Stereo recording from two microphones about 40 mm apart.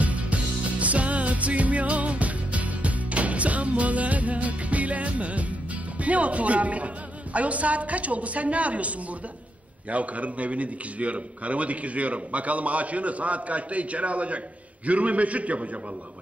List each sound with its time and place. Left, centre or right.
0.0 s music: right
6.0 s a man's voice: right